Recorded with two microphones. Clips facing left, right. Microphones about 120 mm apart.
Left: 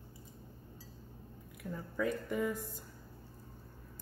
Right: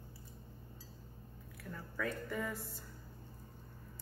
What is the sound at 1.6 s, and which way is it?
Speech, 15° left (ahead or behind).